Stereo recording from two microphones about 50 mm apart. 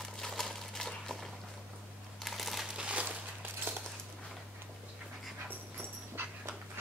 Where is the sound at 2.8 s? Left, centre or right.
Right.